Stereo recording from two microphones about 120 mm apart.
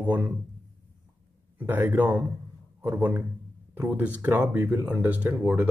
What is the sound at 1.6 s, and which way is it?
Speech, 15° right (ahead or behind).